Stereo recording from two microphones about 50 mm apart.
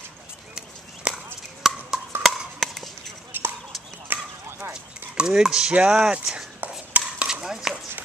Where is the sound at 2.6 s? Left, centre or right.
Centre.